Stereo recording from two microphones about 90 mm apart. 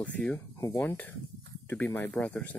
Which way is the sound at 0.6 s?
35° left (ahead or behind).